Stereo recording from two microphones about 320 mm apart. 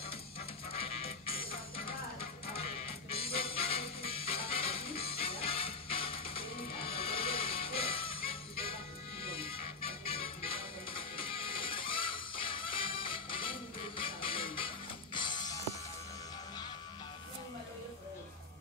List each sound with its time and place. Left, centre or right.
0.7 s music: centre